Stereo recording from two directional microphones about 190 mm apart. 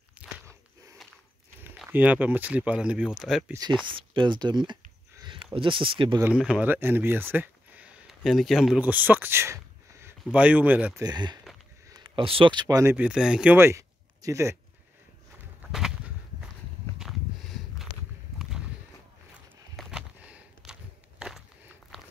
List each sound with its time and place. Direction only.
0.1 s biting: 5° right (ahead or behind)
1.9 s speech: 10° right (ahead or behind)
3.8 s speech: 25° right (ahead or behind)
6.2 s speech: 5° right (ahead or behind)
11.1 s speech: 20° right (ahead or behind)
12.9 s speech: 5° right (ahead or behind)
17.0 s a sound: centre (ahead or behind)
19.8 s a sound: 5° right (ahead or behind)
21.9 s walk: centre (ahead or behind)